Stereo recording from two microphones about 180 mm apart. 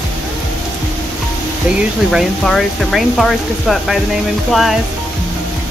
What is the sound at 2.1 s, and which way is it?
Speech, centre (ahead or behind).